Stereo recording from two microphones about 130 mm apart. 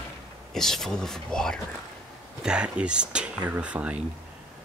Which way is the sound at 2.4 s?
5° right (ahead or behind).